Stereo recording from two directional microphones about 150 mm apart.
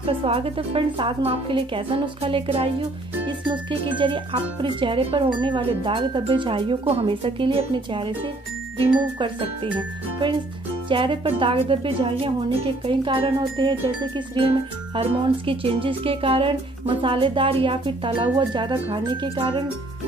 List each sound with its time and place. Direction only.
0.0 s speech: 40° right (ahead or behind)
9.2 s speech: 35° right (ahead or behind)